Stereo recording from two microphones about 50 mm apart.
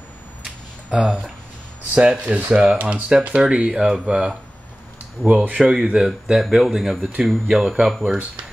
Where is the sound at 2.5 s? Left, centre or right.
Centre.